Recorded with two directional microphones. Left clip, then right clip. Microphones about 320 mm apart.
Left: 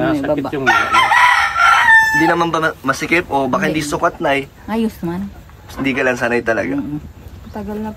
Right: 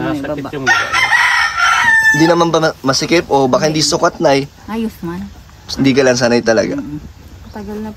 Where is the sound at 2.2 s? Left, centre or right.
Centre.